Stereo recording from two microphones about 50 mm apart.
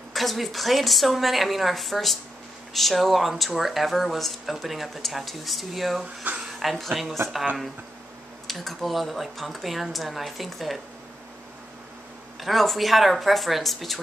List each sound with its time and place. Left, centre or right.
0.1 s speech: centre
6.3 s a sound: right
6.6 s speech: centre
8.5 s speech: centre
12.4 s speech: centre